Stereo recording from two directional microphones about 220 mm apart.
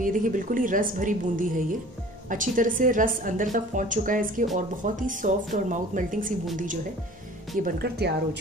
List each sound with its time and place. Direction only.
0.0 s a woman's voice: 35° right (ahead or behind)
7.6 s speech: 45° right (ahead or behind)